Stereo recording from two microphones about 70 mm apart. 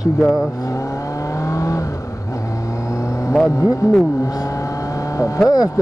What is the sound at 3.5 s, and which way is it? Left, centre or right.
Speech, left.